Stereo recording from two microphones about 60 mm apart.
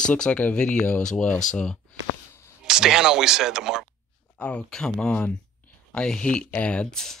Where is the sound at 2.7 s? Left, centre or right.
Centre.